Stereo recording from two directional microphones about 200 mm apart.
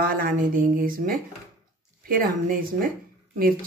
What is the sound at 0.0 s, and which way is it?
Speech, 45° right (ahead or behind).